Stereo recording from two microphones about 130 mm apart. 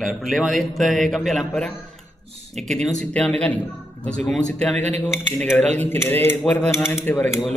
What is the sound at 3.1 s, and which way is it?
Cutlery, 10° left (ahead or behind).